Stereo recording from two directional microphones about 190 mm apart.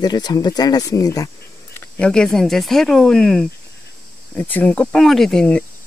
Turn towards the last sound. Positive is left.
turn(degrees=5)  # may be behind; listen again after turning